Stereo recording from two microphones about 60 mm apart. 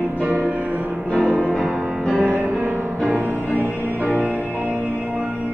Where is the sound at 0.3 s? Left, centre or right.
Right.